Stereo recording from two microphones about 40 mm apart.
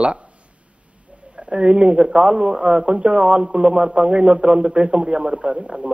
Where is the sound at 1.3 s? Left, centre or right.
Right.